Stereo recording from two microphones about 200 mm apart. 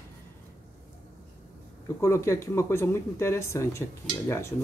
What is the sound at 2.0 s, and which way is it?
Speech, 15° left (ahead or behind).